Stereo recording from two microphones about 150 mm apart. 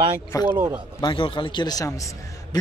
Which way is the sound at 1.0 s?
35° left (ahead or behind).